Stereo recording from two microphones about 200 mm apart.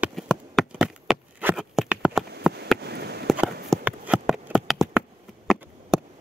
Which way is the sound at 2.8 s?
55° right (ahead or behind).